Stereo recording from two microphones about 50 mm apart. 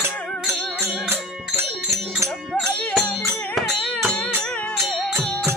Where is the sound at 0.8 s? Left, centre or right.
Right.